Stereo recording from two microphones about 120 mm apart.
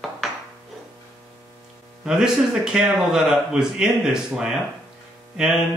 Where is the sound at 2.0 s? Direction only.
5° right (ahead or behind).